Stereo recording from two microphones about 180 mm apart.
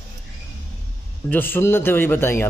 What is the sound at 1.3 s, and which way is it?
Speech, 10° left (ahead or behind).